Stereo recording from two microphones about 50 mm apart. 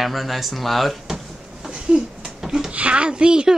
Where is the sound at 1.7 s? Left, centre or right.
Centre.